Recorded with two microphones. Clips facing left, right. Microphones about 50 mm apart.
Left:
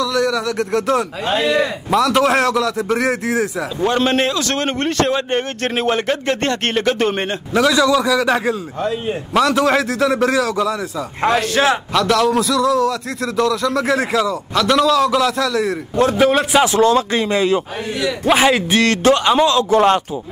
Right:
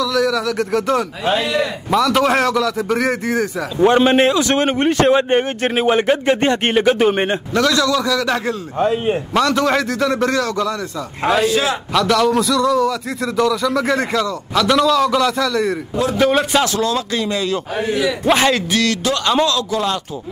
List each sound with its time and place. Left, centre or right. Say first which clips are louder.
0.0 s a man's voice: right 1 dB; centre
1.3 s a man's voice: left 2 dB; left
1.9 s a man's voice: even; centre
3.8 s a man's voice: right 5 dB; centre
7.5 s a man's voice: left 3 dB; centre
8.7 s a man's voice: right 4 dB; right
9.3 s a man's voice: left 3 dB; centre
11.4 s a man's voice: left 1 dB; left
11.9 s a man's voice: even; centre
16.8 s speech: left 5 dB; left
18.2 s a man's voice: left 2 dB; centre
18.7 s a man's voice: left 4 dB; left